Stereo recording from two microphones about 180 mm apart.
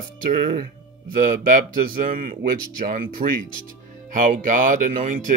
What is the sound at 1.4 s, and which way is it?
Speech, 50° right (ahead or behind).